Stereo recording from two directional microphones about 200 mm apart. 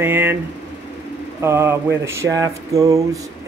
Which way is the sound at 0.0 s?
10° right (ahead or behind).